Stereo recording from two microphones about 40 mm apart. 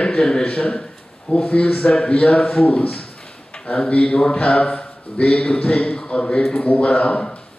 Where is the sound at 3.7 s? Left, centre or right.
Left.